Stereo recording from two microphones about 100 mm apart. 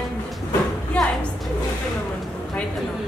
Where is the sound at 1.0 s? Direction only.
10° left (ahead or behind).